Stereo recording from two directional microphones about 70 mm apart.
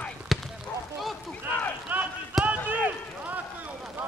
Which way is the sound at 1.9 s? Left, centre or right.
Right.